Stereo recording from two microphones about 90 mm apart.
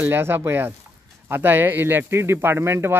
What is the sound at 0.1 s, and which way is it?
Speech, 25° right (ahead or behind).